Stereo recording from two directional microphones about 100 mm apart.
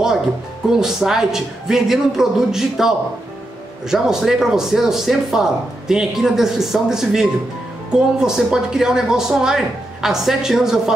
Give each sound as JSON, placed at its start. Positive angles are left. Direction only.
{"t": 0.7, "sound": "speech", "side_deg": -5}